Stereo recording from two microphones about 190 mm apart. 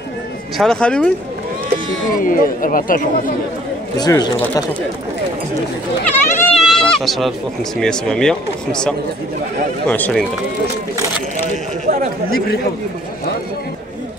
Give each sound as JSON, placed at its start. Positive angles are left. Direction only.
{"t": 0.6, "sound": "speech", "side_deg": 5}
{"t": 2.2, "sound": "speech", "side_deg": 45}
{"t": 4.0, "sound": "speech", "side_deg": 20}
{"t": 6.0, "sound": "goat", "side_deg": 0}
{"t": 7.8, "sound": "speech", "side_deg": 5}